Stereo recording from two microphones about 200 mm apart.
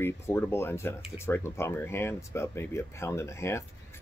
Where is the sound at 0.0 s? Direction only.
10° left (ahead or behind).